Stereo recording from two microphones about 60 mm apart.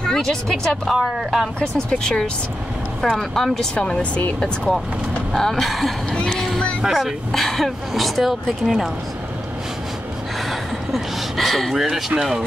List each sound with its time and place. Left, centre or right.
0.0 s speech: centre
0.9 s speech: centre
1.9 s speech: centre
3.7 s speech: centre
4.4 s speech: centre
6.2 s a sound: centre
6.8 s speech: centre
10.5 s a sound: centre
12.2 s speech: centre